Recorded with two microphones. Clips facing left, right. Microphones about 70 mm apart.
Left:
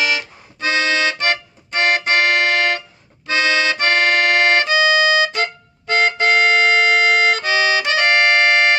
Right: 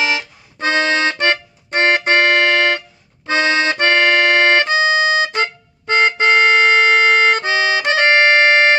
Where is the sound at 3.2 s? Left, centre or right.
Right.